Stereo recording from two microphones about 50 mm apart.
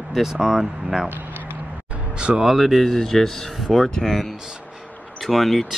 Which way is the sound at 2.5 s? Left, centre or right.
Centre.